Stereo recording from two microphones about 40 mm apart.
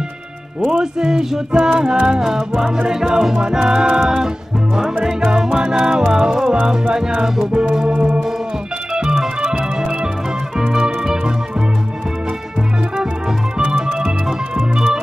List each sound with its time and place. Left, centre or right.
0.7 s a sound: centre
1.7 s music: centre
2.0 s a sound: centre
5.0 s music: centre
7.5 s organ: right
8.9 s music: centre
9.4 s organ: centre
10.7 s music: centre
13.6 s music: centre